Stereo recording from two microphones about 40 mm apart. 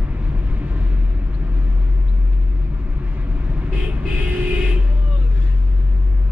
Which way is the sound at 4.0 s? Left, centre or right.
Right.